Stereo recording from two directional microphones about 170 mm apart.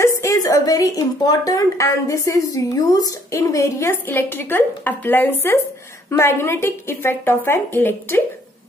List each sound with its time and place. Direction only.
0.0 s a woman's voice: 20° left (ahead or behind)